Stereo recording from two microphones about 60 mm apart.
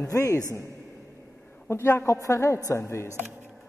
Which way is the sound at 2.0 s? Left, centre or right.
Left.